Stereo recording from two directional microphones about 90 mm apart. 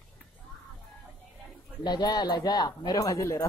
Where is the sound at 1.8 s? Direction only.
50° left (ahead or behind).